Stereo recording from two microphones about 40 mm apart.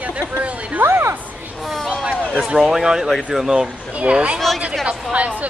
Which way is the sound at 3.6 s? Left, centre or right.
Right.